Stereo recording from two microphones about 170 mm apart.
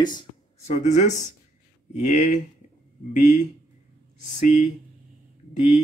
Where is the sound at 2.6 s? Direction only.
40° left (ahead or behind).